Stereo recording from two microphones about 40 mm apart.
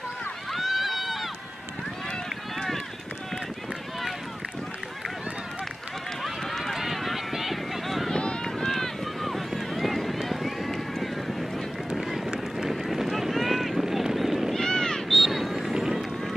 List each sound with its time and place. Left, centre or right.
0.5 s run: centre
6.6 s run: centre
8.2 s run: left
8.6 s run: centre
12.1 s run: centre
14.5 s a sound: centre
15.0 s vehicle: centre
15.7 s run: centre